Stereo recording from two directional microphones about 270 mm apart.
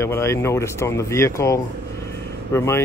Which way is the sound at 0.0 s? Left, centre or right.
Centre.